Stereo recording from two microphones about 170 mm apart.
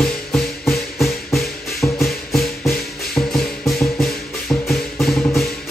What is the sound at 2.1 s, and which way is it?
Music, centre (ahead or behind).